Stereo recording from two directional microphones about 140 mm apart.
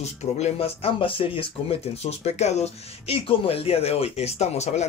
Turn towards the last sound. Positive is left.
turn(degrees=50)  # may be behind; listen again after turning